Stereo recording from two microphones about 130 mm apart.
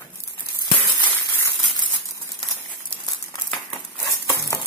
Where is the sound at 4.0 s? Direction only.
25° left (ahead or behind).